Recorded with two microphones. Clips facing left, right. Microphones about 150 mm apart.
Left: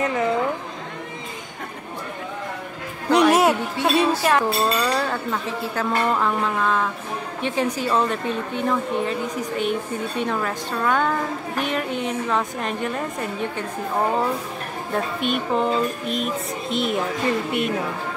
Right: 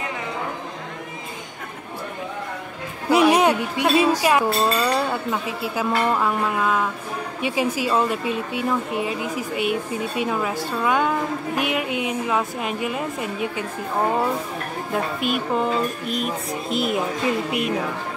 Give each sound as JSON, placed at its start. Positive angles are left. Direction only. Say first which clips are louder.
{"t": 3.1, "sound": "a sound", "louder": "even", "side_deg": 0}
{"t": 3.8, "sound": "speech", "louder": "right 1 dB", "side_deg": -5}
{"t": 15.1, "sound": "speech", "louder": "left 2 dB", "side_deg": -5}